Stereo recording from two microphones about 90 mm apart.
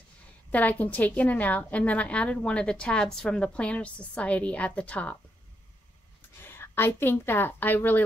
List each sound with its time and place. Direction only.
0.5 s a woman's voice: 15° left (ahead or behind)
6.4 s a woman's voice: 25° left (ahead or behind)